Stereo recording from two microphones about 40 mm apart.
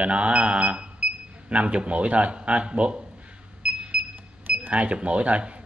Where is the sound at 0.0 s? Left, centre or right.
Right.